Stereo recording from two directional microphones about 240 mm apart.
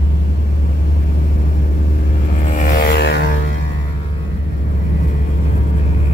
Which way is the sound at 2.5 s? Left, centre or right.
Left.